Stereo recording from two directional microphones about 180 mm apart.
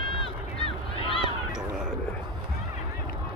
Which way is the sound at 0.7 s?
30° left (ahead or behind).